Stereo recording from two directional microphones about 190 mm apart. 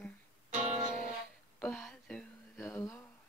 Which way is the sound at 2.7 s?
15° left (ahead or behind).